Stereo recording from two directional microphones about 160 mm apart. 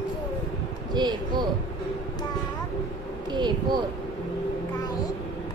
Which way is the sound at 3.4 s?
25° right (ahead or behind).